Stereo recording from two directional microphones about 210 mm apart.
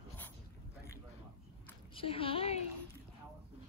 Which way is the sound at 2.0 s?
25° left (ahead or behind).